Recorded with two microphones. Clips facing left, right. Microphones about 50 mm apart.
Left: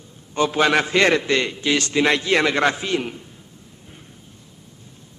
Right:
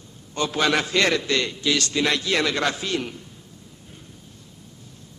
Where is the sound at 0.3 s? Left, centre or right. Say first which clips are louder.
Left 4 dB; left.